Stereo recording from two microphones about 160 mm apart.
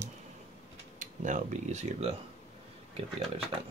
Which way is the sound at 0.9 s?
50° right (ahead or behind).